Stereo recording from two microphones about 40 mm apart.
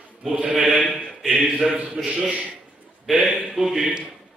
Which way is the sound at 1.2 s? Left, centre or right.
Centre.